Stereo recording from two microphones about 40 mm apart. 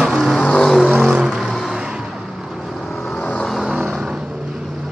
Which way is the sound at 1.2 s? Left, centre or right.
Centre.